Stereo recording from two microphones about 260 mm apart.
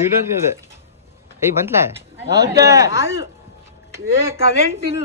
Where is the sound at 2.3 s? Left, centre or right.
Centre.